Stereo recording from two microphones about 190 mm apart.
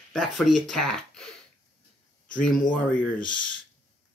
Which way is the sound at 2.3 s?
45° left (ahead or behind).